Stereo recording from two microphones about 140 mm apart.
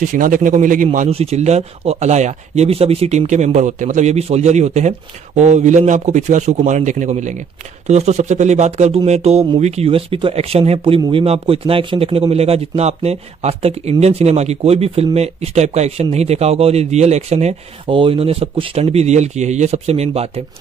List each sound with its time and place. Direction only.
0.0 s speech: 70° right (ahead or behind)
1.1 s speech: 50° right (ahead or behind)